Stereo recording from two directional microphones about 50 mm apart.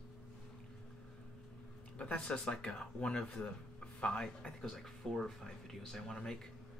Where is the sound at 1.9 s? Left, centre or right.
Left.